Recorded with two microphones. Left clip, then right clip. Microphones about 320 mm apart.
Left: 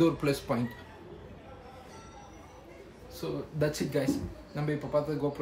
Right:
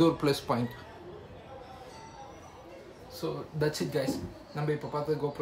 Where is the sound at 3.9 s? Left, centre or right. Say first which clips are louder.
Left 2 dB; centre.